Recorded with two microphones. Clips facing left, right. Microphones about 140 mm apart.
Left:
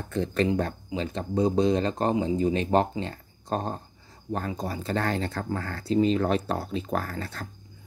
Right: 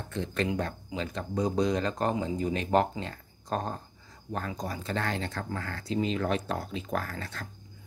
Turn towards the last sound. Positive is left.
turn(degrees=35)  # may be behind; listen again after turning